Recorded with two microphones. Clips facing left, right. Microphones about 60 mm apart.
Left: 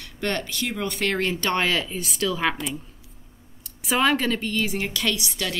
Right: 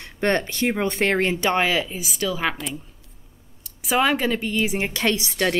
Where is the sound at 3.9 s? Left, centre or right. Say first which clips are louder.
Right 1 dB; centre; by 5.5 s right.